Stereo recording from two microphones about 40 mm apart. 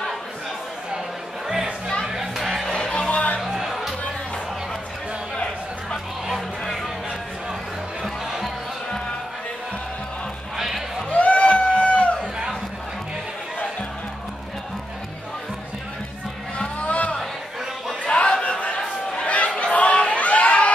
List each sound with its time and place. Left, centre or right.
2.0 s a sound: centre
2.7 s music: centre
3.1 s music: left
3.4 s music: centre
8.0 s music: centre
10.6 s music: centre
11.1 s a sound: left
16.5 s music: left
18.0 s a sound: left